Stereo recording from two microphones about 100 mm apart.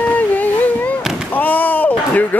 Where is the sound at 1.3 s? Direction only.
15° left (ahead or behind).